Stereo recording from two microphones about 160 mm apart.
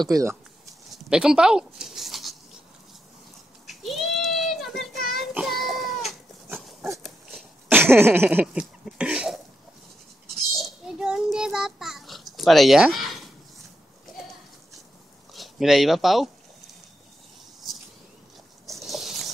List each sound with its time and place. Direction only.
0.0 s speech: 20° right (ahead or behind)
0.9 s a sound: 5° right (ahead or behind)
3.6 s goat: centre (ahead or behind)
5.1 s cat: centre (ahead or behind)
7.0 s dog: centre (ahead or behind)
7.7 s a sound: 15° right (ahead or behind)
10.6 s child singing: 5° right (ahead or behind)
15.3 s speech: centre (ahead or behind)
18.7 s a sound: centre (ahead or behind)